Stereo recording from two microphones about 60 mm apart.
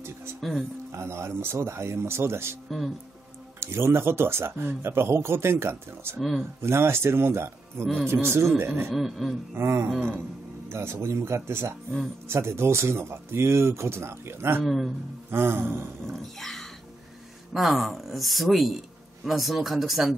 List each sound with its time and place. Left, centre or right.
0.4 s speech: centre
0.9 s speech: right
3.5 s speech: right
7.8 s speech: centre
8.1 s speech: right
8.5 s music: right
8.9 s speech: centre
9.6 s speech: right
14.6 s speech: centre
15.3 s music: right
16.1 s a sound: centre
17.6 s speech: centre